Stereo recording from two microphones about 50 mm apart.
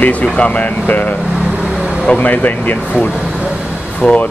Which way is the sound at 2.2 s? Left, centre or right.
Left.